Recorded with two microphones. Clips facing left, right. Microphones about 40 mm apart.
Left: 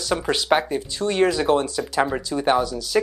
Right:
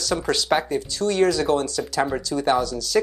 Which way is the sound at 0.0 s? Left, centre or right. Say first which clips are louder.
Even; left.